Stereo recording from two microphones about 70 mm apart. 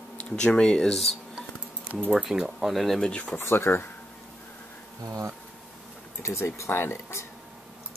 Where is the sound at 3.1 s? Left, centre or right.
Centre.